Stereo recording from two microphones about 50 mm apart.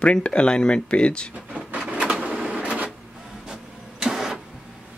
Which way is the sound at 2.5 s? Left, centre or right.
Right.